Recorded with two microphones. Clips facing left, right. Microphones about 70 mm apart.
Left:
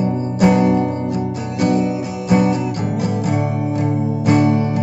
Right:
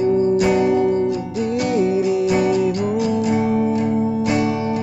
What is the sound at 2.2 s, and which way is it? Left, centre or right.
Music, left.